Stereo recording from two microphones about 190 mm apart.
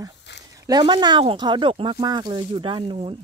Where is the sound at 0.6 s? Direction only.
20° right (ahead or behind).